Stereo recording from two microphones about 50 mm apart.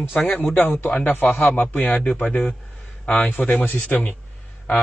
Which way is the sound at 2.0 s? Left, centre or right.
Left.